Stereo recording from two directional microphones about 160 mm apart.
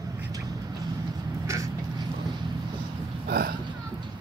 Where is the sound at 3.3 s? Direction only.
75° right (ahead or behind).